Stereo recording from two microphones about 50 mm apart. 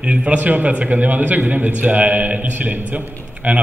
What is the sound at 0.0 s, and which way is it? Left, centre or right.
A man's voice, right.